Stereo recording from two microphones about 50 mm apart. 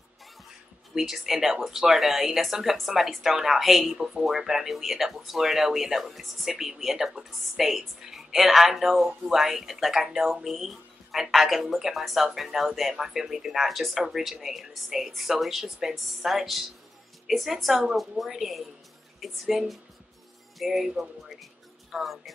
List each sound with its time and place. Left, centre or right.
0.9 s a woman's voice: centre